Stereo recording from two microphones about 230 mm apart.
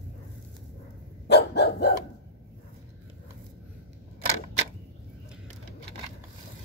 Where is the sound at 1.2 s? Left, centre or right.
Left.